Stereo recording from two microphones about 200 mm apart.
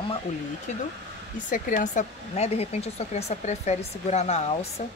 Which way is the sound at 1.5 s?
40° left (ahead or behind).